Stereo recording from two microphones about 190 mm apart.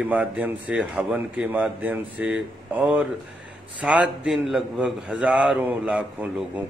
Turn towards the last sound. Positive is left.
turn(degrees=-5)  # may be behind; listen again after turning